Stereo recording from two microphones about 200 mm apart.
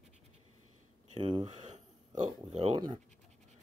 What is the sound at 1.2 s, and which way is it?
Speech, 25° right (ahead or behind).